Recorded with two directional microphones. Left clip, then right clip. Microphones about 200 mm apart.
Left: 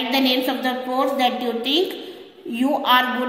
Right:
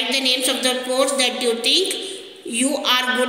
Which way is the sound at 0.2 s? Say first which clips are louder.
Right 1 dB; 45° left (ahead or behind).